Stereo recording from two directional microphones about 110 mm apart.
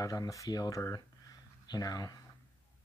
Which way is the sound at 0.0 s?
30° left (ahead or behind).